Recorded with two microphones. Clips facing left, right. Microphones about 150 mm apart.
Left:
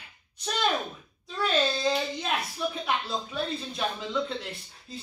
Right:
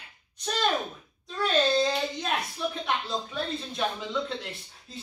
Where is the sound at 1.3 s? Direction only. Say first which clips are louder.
Right 3 dB; centre (ahead or behind).